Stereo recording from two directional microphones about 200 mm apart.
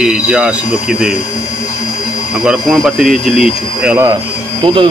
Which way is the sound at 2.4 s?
5° right (ahead or behind).